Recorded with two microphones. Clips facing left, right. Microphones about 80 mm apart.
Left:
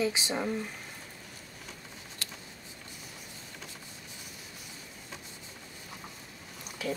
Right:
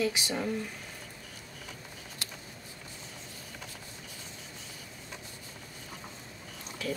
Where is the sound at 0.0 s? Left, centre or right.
Left.